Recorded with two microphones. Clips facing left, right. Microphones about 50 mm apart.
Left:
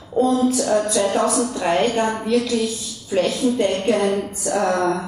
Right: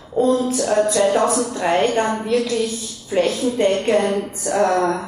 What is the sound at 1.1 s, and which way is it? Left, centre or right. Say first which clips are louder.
Speech: right 1 dB; right.